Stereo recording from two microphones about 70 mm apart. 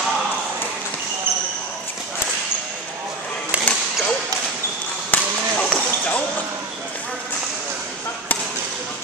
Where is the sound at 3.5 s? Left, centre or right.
Centre.